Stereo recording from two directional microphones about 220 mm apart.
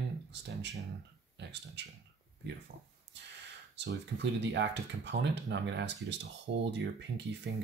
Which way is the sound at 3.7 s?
50° right (ahead or behind).